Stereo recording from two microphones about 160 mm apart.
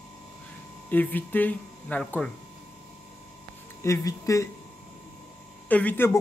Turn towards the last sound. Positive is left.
turn(degrees=10)  # may be behind; listen again after turning